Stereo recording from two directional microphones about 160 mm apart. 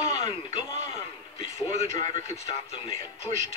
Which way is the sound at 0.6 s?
25° left (ahead or behind).